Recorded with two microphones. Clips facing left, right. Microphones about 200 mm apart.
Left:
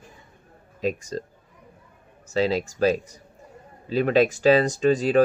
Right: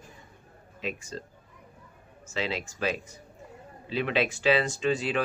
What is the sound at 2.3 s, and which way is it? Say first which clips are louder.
Speech: left 9 dB; 40° left (ahead or behind).